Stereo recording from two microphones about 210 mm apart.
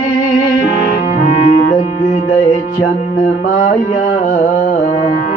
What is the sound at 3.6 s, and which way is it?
Carnatic music, 40° left (ahead or behind).